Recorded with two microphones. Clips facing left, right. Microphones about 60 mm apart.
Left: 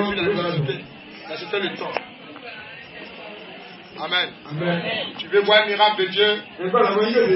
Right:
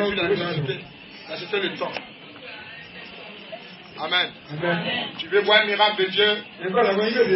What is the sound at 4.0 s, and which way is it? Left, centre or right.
A man's voice, centre.